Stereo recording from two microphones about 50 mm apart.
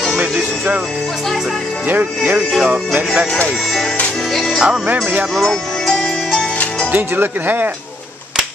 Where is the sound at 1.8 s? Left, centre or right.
Right.